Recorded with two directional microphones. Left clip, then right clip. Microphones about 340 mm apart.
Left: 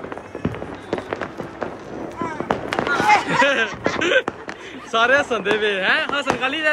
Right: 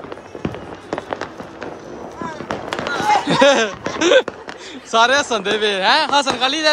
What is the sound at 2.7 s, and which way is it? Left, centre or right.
Fireworks, right.